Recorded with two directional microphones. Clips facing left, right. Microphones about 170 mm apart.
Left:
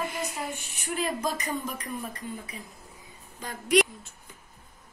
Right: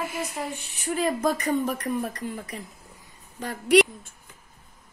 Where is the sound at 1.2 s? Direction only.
55° right (ahead or behind).